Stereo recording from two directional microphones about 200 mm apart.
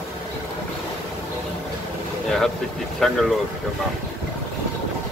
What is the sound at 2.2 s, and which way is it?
Speech, centre (ahead or behind).